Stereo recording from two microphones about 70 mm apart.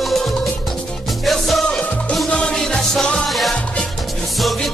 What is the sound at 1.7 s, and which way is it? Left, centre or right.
Music, centre.